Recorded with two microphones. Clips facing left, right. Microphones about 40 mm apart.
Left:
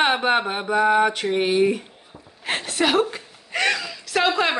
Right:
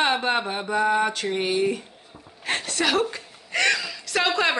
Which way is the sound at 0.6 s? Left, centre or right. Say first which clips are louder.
Left 4 dB; centre.